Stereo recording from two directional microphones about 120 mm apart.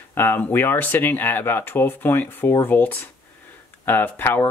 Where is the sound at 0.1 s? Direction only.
15° left (ahead or behind).